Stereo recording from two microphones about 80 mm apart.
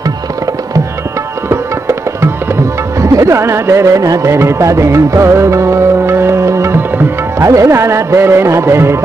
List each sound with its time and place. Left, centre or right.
3.0 s music: right